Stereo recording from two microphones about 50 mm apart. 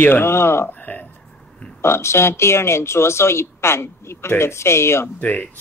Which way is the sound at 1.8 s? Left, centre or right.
Left.